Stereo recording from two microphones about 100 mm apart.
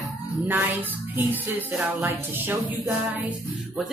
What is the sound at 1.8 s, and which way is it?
Speech, 20° right (ahead or behind).